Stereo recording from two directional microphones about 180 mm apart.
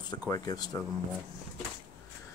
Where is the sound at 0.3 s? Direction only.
20° left (ahead or behind).